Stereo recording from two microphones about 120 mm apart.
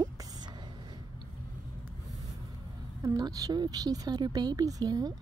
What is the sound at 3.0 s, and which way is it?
Speech, 30° right (ahead or behind).